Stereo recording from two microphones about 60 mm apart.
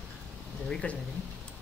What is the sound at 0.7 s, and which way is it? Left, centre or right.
Speech, centre.